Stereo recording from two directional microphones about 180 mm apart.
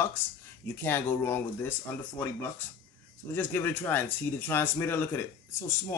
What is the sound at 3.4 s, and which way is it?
Speech, 10° left (ahead or behind).